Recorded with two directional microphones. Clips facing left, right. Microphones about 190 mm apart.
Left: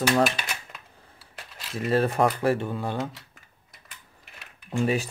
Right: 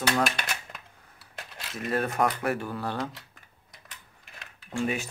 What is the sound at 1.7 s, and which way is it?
Speech, 30° left (ahead or behind).